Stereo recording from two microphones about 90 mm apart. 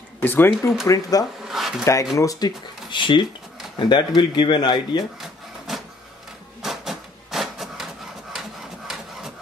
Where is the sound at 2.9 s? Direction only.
65° left (ahead or behind).